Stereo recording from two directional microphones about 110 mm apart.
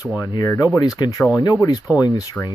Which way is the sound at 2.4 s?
5° left (ahead or behind).